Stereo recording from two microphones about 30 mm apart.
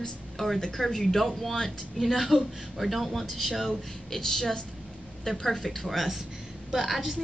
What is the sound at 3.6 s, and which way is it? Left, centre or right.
A man's voice, centre.